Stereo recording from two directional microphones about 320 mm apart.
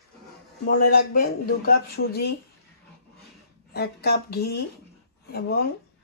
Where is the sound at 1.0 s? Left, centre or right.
Left.